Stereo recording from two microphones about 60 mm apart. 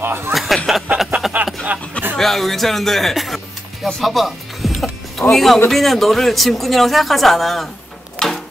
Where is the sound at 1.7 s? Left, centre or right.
Right.